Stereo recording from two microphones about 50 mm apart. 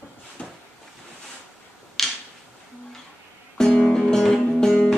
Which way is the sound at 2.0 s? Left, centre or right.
Centre.